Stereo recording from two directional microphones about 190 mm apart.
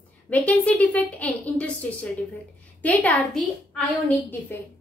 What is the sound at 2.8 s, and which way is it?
A woman's voice, 5° left (ahead or behind).